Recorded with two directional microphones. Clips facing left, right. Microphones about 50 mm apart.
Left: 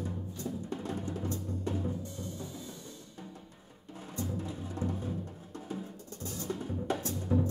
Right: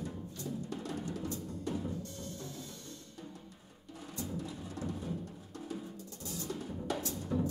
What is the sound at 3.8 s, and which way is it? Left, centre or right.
Music, left.